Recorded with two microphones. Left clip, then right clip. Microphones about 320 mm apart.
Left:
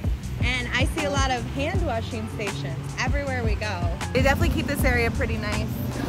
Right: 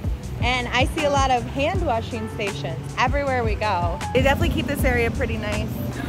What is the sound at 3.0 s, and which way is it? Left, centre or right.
Speech, right.